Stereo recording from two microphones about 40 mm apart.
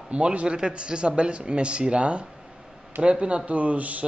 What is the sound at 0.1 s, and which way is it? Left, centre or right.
A man's voice, right.